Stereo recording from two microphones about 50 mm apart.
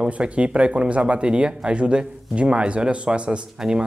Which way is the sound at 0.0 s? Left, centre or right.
Right.